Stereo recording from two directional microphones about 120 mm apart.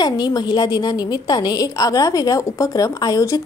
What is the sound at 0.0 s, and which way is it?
A woman's voice, 35° left (ahead or behind).